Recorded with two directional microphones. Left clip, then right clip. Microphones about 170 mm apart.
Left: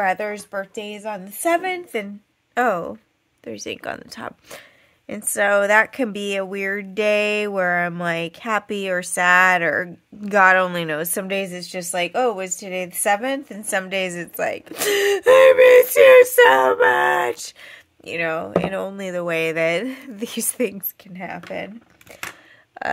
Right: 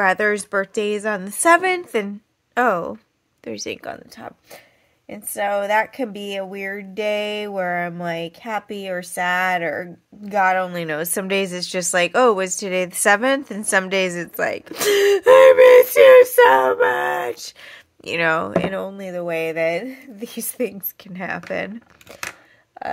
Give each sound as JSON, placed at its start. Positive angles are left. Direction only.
{"t": 0.0, "sound": "speech", "side_deg": -20}
{"t": 0.3, "sound": "a woman's voice", "side_deg": -35}
{"t": 2.5, "sound": "a woman's voice", "side_deg": -5}
{"t": 3.8, "sound": "speech", "side_deg": 20}
{"t": 10.8, "sound": "a woman's voice", "side_deg": 5}
{"t": 11.5, "sound": "a woman's voice", "side_deg": -25}
{"t": 18.0, "sound": "speech", "side_deg": -20}
{"t": 18.7, "sound": "speech", "side_deg": 5}
{"t": 19.1, "sound": "speech", "side_deg": 25}
{"t": 21.0, "sound": "speech", "side_deg": -20}
{"t": 22.8, "sound": "burping", "side_deg": 15}